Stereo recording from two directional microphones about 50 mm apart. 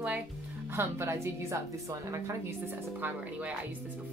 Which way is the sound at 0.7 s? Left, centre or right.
Right.